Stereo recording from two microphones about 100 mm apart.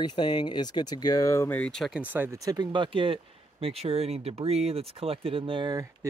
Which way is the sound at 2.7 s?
60° right (ahead or behind).